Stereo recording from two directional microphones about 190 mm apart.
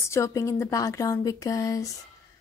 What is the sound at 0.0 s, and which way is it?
Speech, 15° left (ahead or behind).